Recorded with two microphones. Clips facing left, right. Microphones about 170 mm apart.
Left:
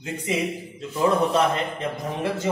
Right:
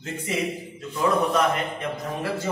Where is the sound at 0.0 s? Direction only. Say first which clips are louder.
Left 3 dB; 15° left (ahead or behind).